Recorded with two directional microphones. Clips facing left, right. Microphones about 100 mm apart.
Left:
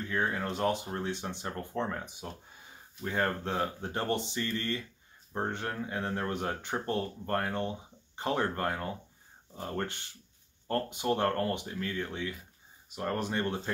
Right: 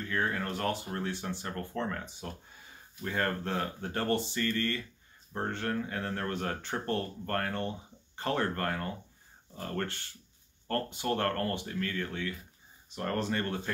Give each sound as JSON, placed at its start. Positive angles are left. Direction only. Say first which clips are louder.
{"t": 0.0, "sound": "speech", "louder": "left 1 dB", "side_deg": 15}